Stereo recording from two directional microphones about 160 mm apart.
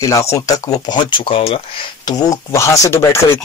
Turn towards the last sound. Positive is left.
turn(degrees=15)  # may be behind; listen again after turning